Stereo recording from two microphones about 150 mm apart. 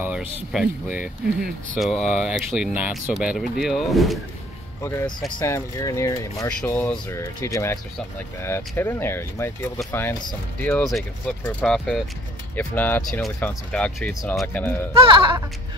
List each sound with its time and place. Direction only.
0.5 s speech: 5° right (ahead or behind)
5.4 s speech: 20° left (ahead or behind); by 14.6 s 5° left (ahead or behind)
15.0 s music: 35° right (ahead or behind)